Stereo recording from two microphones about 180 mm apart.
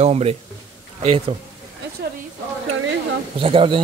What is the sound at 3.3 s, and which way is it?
Speech, 30° right (ahead or behind).